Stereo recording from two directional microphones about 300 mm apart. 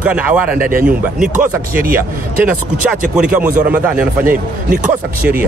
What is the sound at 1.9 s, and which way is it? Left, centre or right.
Speech, centre.